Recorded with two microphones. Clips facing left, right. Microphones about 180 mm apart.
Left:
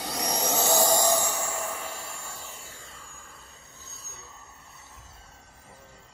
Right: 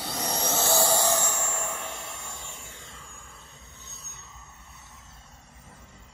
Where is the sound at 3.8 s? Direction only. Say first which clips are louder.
Left 1 dB; centre (ahead or behind).